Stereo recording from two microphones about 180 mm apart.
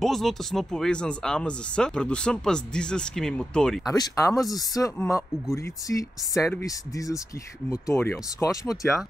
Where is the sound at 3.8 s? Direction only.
20° left (ahead or behind).